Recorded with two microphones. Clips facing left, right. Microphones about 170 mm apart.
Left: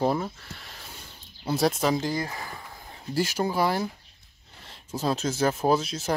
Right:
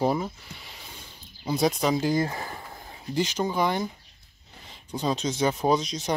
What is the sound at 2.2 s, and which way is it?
Speech, 25° right (ahead or behind).